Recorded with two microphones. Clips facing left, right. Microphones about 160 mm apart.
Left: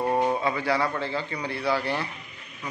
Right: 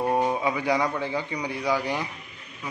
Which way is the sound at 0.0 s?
10° right (ahead or behind).